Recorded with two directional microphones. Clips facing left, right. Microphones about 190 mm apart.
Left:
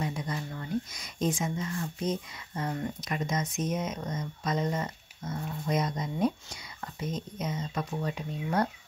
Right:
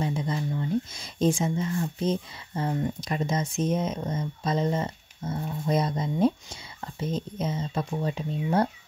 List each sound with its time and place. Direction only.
0.0 s speech: 25° right (ahead or behind)